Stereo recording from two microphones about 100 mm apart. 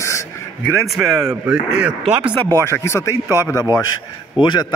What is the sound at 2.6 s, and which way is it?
A man's voice, 25° left (ahead or behind).